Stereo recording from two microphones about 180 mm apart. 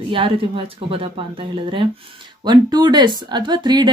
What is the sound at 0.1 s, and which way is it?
Speech, 30° right (ahead or behind).